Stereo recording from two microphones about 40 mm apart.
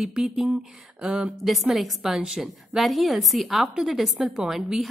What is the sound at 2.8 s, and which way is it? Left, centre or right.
A woman's voice, centre.